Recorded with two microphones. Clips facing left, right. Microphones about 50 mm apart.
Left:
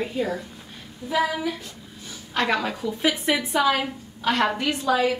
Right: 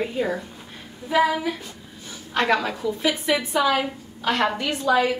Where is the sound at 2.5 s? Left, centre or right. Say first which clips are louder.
Right 2 dB; centre.